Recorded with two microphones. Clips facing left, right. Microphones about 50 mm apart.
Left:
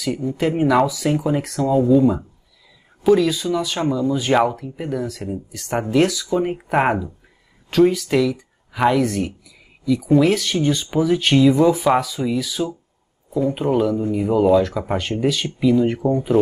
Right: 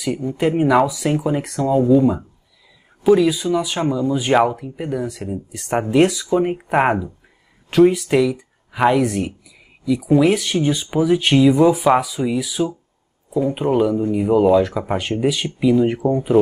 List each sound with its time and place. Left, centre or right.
0.0 s speech: centre
5.5 s speech: right
6.3 s speech: centre
7.7 s speech: centre